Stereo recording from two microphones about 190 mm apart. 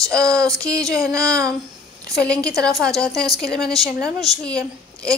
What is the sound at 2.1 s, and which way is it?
Speech, 5° left (ahead or behind).